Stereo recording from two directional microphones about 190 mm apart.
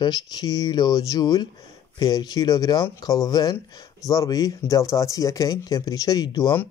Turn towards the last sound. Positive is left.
turn(degrees=20)  # may be behind; listen again after turning